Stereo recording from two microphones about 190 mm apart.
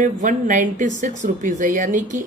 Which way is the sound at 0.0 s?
40° right (ahead or behind).